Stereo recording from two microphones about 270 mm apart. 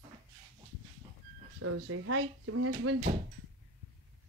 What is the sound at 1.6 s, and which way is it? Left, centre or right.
Speech, right.